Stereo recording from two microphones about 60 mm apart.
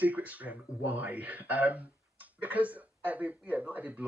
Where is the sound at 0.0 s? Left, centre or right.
Right.